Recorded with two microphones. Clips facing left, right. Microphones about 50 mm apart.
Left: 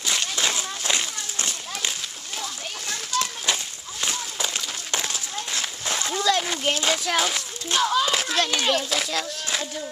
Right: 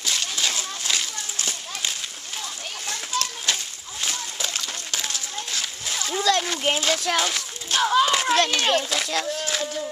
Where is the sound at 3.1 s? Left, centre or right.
Centre.